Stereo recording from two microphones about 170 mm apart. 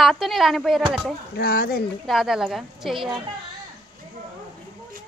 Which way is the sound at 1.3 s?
60° left (ahead or behind).